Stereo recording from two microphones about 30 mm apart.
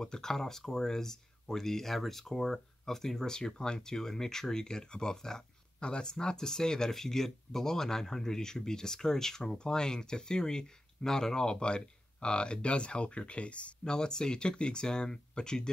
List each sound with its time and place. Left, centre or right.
0.0 s speech: left
5.8 s speech: left
13.8 s speech: left